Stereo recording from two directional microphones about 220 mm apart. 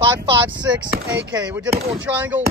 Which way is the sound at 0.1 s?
5° right (ahead or behind).